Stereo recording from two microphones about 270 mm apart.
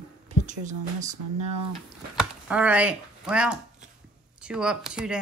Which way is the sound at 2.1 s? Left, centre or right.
Centre.